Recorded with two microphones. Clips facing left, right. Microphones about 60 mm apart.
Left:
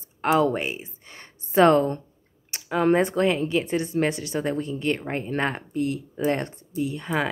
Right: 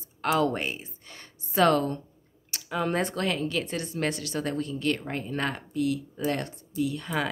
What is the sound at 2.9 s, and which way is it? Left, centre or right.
Speech, left.